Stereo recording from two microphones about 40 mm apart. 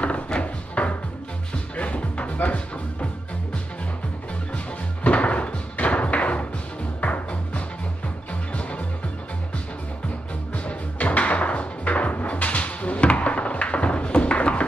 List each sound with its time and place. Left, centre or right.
0.0 s music: left
5.0 s music: left
10.5 s music: left